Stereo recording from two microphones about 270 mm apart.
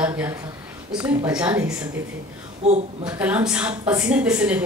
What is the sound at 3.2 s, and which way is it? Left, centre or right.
Speech, centre.